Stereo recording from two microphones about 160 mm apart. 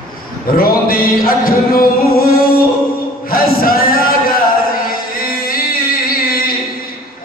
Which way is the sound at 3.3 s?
65° left (ahead or behind).